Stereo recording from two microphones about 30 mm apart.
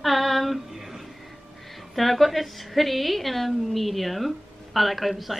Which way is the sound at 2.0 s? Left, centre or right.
Centre.